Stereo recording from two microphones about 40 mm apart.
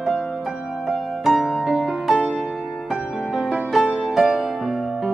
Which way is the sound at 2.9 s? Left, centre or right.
Centre.